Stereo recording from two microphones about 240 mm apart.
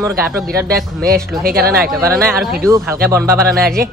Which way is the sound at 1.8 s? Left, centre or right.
Centre.